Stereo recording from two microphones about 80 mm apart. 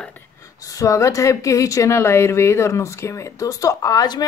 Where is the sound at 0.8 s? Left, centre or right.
Left.